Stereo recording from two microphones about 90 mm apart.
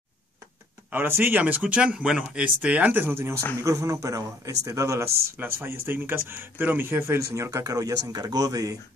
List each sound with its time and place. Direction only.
0.9 s speech: 25° right (ahead or behind); by 8.7 s 40° right (ahead or behind)